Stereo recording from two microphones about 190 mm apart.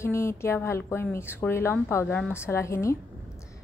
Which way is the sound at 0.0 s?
15° left (ahead or behind).